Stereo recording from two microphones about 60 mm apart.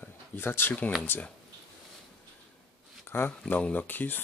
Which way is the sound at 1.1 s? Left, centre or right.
Left.